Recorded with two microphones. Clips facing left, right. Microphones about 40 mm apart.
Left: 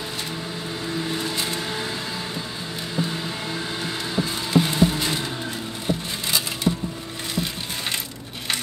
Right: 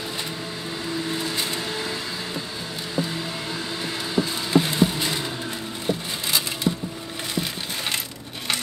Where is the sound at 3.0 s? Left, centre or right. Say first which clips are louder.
Even; left.